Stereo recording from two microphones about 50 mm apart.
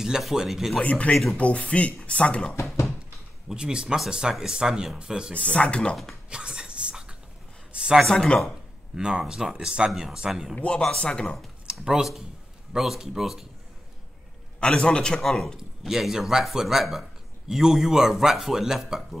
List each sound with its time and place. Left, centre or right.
0.2 s speech: centre
0.7 s speech: left
3.4 s a man's voice: centre
5.3 s speech: left
6.3 s a sound: centre
8.1 s a man's voice: centre
8.9 s a man's voice: centre
10.5 s a man's voice: centre
11.8 s a man's voice: centre
14.6 s a man's voice: left
15.9 s a man's voice: centre